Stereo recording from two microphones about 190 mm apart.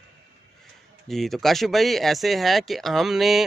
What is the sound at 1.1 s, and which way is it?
Speech, centre (ahead or behind).